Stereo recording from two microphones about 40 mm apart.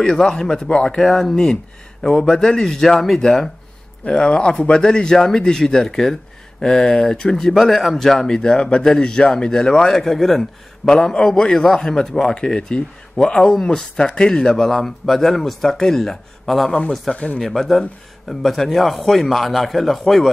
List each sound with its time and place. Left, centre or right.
0.0 s a man's voice: centre
0.9 s speech: centre
4.0 s a man's voice: left
9.9 s speech: centre; by 11.5 s left
11.5 s a man's voice: centre